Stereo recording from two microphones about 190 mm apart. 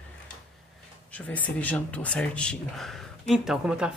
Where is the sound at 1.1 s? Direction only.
5° left (ahead or behind).